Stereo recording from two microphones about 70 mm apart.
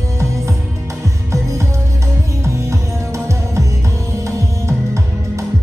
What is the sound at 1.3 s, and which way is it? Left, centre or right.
Music, right.